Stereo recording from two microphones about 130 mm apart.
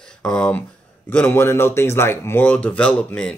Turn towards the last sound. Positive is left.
turn(degrees=10)  # may be behind; listen again after turning